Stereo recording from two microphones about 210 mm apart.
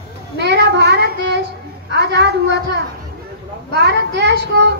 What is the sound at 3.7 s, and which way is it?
Child singing, 55° right (ahead or behind).